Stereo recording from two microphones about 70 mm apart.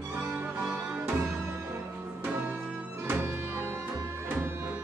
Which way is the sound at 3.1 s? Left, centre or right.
Right.